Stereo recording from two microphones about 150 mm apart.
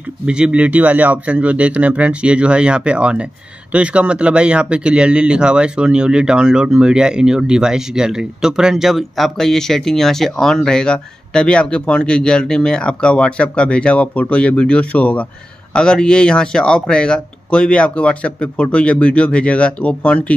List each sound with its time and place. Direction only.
0.3 s a man's voice: 5° right (ahead or behind); by 20.3 s 10° left (ahead or behind)